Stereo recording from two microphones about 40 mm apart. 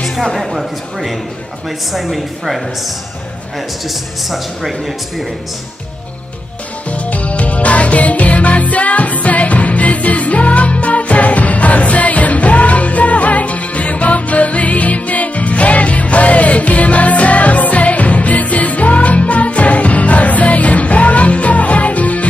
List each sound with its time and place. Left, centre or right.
0.0 s a sound: centre
0.4 s a man's voice: centre
6.9 s music: left